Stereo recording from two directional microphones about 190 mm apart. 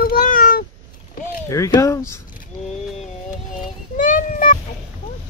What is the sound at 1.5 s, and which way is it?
Speech, 15° left (ahead or behind).